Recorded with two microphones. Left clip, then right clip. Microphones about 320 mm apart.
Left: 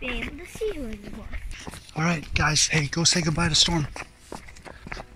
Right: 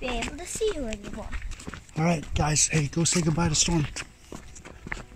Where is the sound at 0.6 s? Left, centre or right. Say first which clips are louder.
Right 2 dB; centre.